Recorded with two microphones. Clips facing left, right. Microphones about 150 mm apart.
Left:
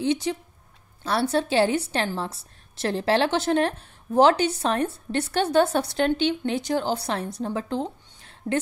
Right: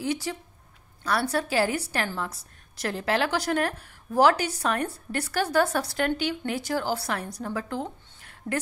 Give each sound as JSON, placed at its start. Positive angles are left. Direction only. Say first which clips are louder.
{"t": 0.0, "sound": "a woman's voice", "louder": "left 5 dB", "side_deg": 20}